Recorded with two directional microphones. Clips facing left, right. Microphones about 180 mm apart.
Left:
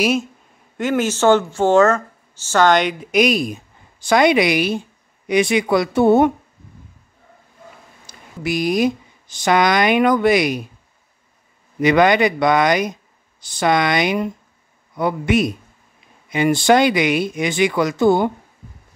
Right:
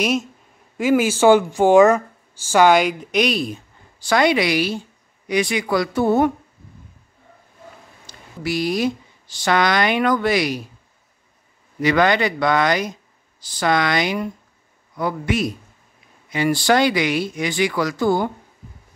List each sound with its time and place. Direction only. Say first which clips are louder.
0.7 s speech: right 2 dB; 10° right (ahead or behind); by 6.3 s 25° left (ahead or behind)
8.4 s speech: left 3 dB; 20° left (ahead or behind)
11.8 s speech: left 3 dB; 20° left (ahead or behind)